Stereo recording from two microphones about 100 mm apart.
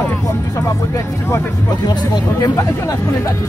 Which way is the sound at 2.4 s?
35° left (ahead or behind).